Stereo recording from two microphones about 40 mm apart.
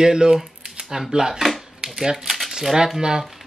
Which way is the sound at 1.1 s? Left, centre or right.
Centre.